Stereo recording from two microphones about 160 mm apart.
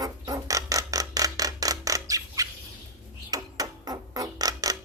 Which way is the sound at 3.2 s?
25° right (ahead or behind).